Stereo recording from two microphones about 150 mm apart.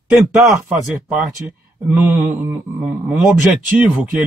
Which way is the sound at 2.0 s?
10° right (ahead or behind).